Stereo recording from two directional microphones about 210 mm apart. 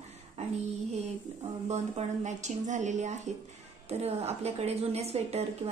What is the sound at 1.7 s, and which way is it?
A woman's voice, 35° right (ahead or behind).